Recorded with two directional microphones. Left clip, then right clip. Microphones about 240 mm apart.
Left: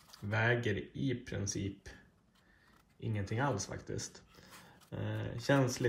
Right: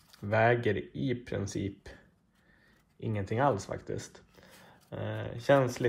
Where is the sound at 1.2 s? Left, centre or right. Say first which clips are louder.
Right 5 dB; centre.